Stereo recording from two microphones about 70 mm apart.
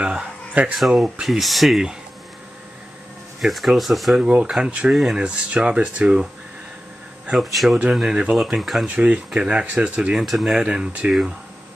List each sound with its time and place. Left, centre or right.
0.0 s a sound: centre
0.7 s speech: centre
3.3 s speech: centre
4.2 s speech: centre
7.5 s speech: centre
8.8 s speech: centre
10.2 s speech: centre